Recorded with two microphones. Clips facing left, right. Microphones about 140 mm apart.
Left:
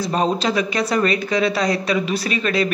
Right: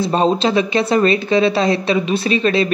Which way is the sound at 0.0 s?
25° right (ahead or behind).